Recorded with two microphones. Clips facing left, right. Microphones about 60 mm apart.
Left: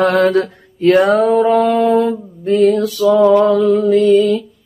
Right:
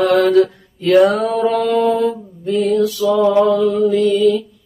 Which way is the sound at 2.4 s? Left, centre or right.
Left.